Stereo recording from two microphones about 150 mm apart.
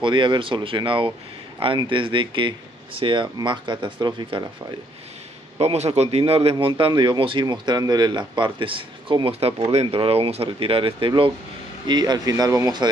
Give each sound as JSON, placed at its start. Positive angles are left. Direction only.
{"t": 0.0, "sound": "speech", "side_deg": -30}
{"t": 5.6, "sound": "speech", "side_deg": -45}